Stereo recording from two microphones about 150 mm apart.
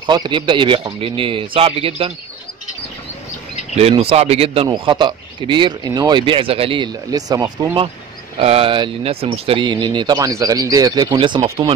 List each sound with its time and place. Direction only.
0.0 s speech: 30° right (ahead or behind)
3.7 s speech: 40° right (ahead or behind)
4.6 s speech: 30° right (ahead or behind)